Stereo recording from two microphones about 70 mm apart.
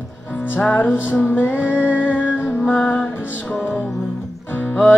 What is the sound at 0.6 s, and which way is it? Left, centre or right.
Music, left.